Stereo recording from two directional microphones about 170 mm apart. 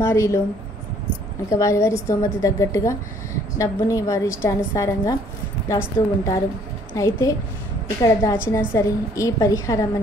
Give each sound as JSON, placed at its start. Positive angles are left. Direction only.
{"t": 0.0, "sound": "a woman's voice", "side_deg": 15}
{"t": 1.5, "sound": "a woman's voice", "side_deg": 20}